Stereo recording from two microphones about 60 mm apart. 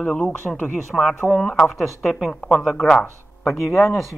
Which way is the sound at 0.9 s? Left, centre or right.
Centre.